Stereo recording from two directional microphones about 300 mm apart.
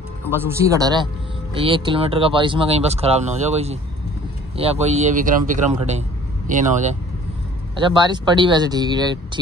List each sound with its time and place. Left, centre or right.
0.3 s speech: centre; by 6.6 s right
7.7 s speech: centre